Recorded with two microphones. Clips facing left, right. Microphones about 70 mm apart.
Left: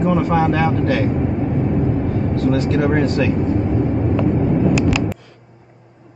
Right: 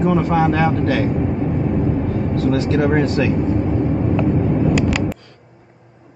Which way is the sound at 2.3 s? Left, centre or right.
Centre.